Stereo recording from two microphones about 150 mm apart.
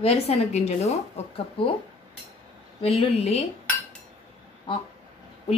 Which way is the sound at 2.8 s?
40° left (ahead or behind).